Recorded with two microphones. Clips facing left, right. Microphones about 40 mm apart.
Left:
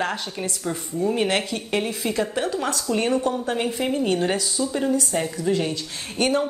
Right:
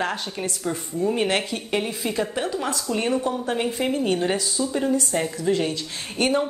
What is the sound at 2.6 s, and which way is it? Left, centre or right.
Speech, right.